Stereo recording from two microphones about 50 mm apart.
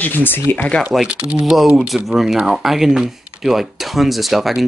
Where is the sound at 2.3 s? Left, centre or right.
Centre.